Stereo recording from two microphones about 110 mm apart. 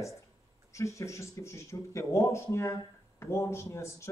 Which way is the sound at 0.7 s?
25° left (ahead or behind).